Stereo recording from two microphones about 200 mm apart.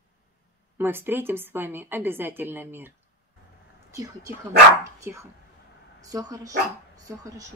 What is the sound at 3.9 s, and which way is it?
Speech, 15° right (ahead or behind).